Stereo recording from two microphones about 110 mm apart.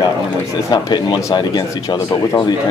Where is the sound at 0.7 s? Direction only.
45° left (ahead or behind).